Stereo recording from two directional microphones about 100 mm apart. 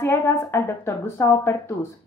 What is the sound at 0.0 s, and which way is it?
A woman's voice, 25° left (ahead or behind).